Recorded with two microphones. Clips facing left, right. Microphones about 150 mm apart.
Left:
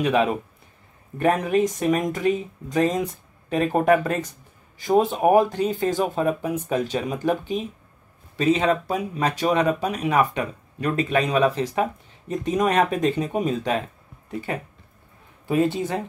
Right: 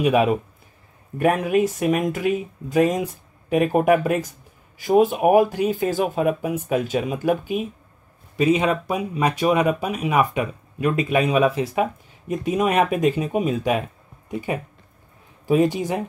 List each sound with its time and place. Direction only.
0.0 s speech: 10° right (ahead or behind)